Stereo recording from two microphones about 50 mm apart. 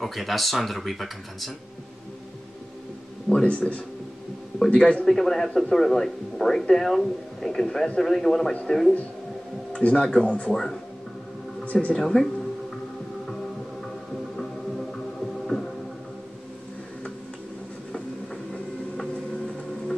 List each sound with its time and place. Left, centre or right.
0.0 s speech: centre
3.4 s speech: left
5.0 s a man's voice: centre
9.7 s speech: left
10.2 s speech: left
10.5 s speech: centre
11.6 s a sound: left
12.0 s speech: centre
15.4 s music: centre